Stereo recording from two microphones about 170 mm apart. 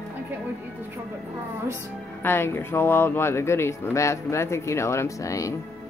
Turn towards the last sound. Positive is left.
turn(degrees=20)  # may be behind; listen again after turning